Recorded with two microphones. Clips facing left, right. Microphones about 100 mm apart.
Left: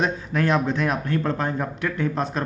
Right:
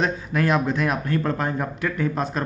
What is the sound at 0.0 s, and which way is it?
Speech, 5° right (ahead or behind).